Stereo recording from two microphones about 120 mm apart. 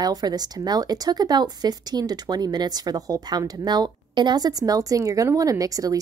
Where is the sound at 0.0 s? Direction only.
35° right (ahead or behind).